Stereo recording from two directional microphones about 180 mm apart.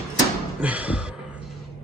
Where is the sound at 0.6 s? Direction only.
10° right (ahead or behind).